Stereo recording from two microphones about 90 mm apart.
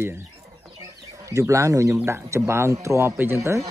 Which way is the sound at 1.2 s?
35° right (ahead or behind).